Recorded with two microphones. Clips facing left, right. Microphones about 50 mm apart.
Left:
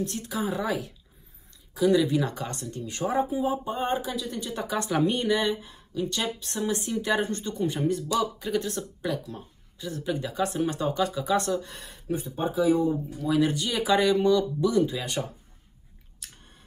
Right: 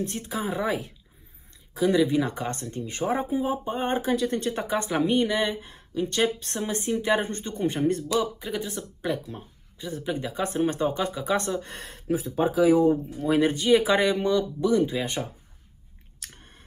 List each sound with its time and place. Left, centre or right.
0.0 s speech: right
4.2 s speech: right
4.9 s speech: centre
5.3 s speech: right
8.2 s speech: centre
9.1 s speech: right
11.7 s speech: right
12.1 s speech: right
12.9 s speech: right